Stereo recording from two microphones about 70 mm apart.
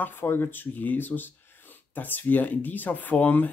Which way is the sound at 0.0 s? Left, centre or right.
Left.